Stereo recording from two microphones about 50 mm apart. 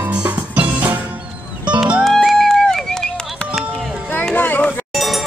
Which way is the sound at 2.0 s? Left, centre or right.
Centre.